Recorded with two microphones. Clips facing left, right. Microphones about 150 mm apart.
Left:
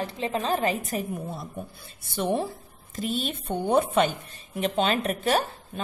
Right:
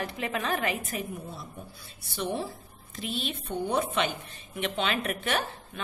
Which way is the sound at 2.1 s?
50° left (ahead or behind).